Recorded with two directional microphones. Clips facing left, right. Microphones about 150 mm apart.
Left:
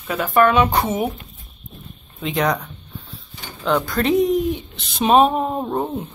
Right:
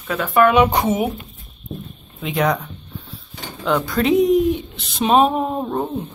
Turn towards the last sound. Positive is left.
turn(degrees=5)  # may be behind; listen again after turning